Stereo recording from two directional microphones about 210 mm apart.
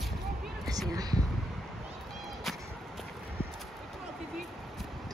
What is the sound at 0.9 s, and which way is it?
Speech, 15° right (ahead or behind).